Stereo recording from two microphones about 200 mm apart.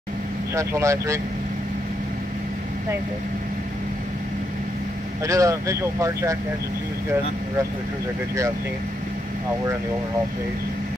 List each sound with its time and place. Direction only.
0.6 s speech: 15° right (ahead or behind)
5.2 s speech: 15° right (ahead or behind)